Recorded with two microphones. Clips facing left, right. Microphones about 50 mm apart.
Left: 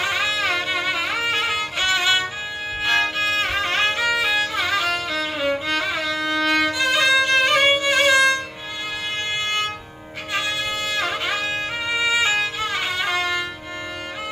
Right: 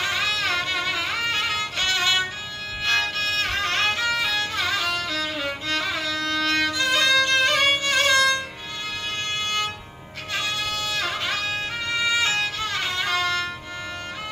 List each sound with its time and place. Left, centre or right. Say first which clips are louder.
0.0 s music: left 2 dB; centre
2.8 s violin: left 3 dB; centre
10.3 s music: left 3 dB; centre